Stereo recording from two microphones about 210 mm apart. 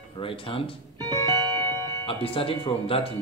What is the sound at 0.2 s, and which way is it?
Speech, 25° left (ahead or behind).